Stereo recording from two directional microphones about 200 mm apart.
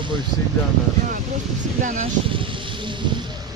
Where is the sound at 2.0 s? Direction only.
25° right (ahead or behind).